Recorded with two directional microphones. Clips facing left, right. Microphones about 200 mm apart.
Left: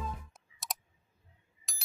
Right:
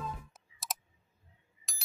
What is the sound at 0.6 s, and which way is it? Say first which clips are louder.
Clicking: even; centre (ahead or behind).